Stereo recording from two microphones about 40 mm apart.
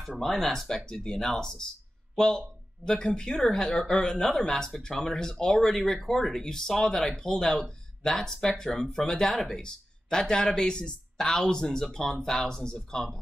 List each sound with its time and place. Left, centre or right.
0.2 s speech: centre
0.7 s speech: left